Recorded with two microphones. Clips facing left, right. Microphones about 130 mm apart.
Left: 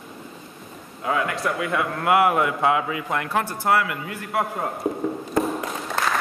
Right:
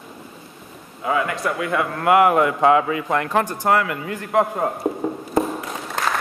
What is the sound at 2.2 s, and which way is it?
A man's voice, 40° right (ahead or behind).